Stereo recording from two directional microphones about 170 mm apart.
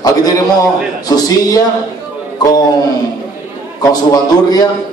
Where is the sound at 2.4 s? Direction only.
20° left (ahead or behind).